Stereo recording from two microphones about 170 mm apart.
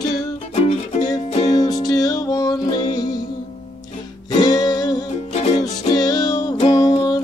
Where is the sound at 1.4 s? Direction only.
25° left (ahead or behind).